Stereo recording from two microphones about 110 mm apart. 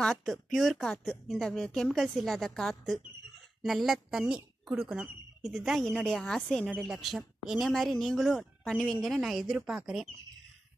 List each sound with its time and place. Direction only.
0.0 s a woman's voice: centre (ahead or behind)